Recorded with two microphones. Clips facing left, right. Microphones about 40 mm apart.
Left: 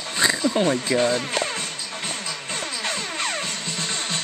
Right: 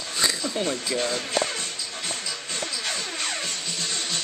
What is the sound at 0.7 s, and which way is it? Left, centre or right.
Speech, left.